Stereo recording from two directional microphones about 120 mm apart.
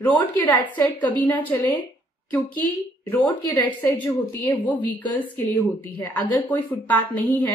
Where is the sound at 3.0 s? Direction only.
15° left (ahead or behind).